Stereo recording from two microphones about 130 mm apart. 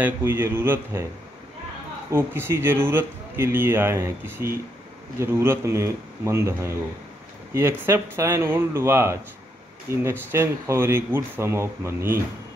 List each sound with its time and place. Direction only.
0.0 s a man's voice: 20° right (ahead or behind)
2.0 s a man's voice: 20° right (ahead or behind)
7.8 s a man's voice: 20° right (ahead or behind)